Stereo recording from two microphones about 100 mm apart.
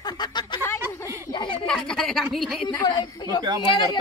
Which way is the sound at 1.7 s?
5° left (ahead or behind).